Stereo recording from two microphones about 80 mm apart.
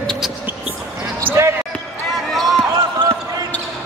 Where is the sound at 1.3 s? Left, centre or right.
Right.